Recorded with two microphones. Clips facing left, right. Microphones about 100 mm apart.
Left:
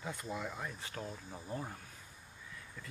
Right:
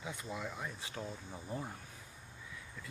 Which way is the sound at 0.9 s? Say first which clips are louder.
Even; 5° left (ahead or behind).